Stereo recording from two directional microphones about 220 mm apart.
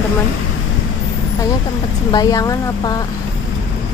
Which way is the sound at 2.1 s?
15° left (ahead or behind).